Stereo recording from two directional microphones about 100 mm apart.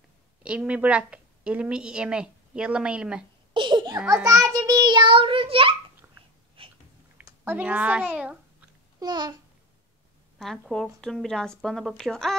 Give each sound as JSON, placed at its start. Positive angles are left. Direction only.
{"t": 0.4, "sound": "a woman's voice", "side_deg": -10}
{"t": 3.5, "sound": "a sound", "side_deg": -50}
{"t": 4.1, "sound": "a child's voice", "side_deg": -35}
{"t": 6.6, "sound": "a sound", "side_deg": -65}
{"t": 7.4, "sound": "a woman's voice", "side_deg": -15}
{"t": 9.0, "sound": "a child's voice", "side_deg": -45}
{"t": 10.4, "sound": "a woman's voice", "side_deg": 5}